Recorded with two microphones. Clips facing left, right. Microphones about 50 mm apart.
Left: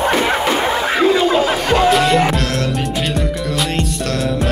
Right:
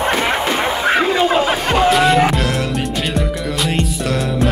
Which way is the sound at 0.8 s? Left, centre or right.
Right.